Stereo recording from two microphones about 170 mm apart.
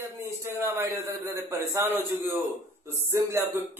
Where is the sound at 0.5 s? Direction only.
15° right (ahead or behind).